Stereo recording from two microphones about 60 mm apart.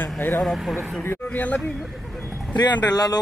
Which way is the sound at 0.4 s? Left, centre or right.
Centre.